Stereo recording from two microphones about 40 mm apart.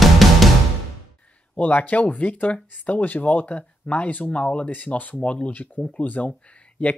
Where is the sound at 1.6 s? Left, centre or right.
Left.